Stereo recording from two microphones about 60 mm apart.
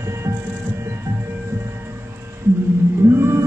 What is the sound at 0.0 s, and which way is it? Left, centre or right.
Music, right.